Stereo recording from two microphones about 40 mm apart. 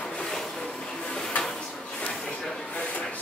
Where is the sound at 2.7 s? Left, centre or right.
Left.